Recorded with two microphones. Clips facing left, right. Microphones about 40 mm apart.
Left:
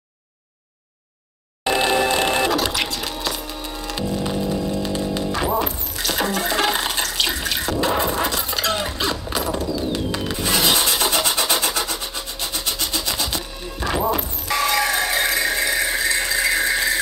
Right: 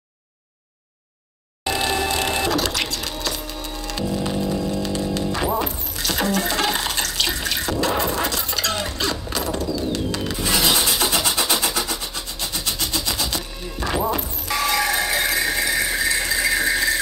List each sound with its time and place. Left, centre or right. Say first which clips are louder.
1.6 s music: left 4 dB; left
2.5 s music: left 1 dB; centre